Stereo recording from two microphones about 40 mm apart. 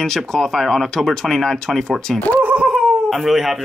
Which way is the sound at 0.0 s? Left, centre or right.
Centre.